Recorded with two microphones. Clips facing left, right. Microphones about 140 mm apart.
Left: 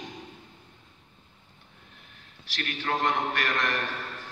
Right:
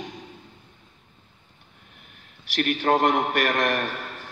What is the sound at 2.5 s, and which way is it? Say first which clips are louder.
A man's voice: right 9 dB; 60° right (ahead or behind).